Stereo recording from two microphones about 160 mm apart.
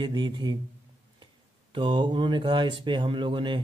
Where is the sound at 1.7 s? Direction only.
30° right (ahead or behind).